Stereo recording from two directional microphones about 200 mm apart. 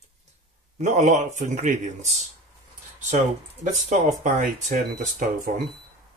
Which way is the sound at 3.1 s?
40° right (ahead or behind).